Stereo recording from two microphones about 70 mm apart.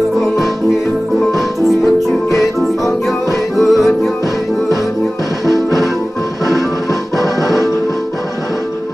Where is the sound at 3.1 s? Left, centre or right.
Centre.